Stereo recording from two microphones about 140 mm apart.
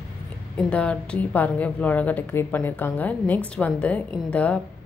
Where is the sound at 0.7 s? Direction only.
10° left (ahead or behind).